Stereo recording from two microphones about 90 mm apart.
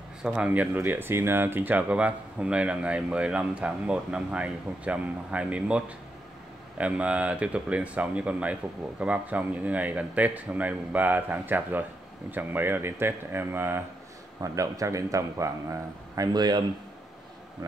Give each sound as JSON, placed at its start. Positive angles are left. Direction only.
{"t": 0.2, "sound": "speech", "side_deg": -15}
{"t": 14.4, "sound": "a man's voice", "side_deg": -40}
{"t": 16.3, "sound": "speech", "side_deg": -50}